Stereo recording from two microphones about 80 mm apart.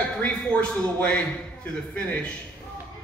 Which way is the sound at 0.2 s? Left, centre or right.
Centre.